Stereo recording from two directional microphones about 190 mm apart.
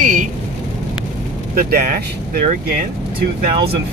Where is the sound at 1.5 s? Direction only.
50° right (ahead or behind).